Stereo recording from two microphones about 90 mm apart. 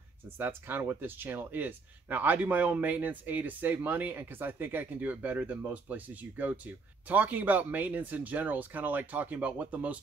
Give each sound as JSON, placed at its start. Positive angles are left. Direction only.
{"t": 0.4, "sound": "speech", "side_deg": -25}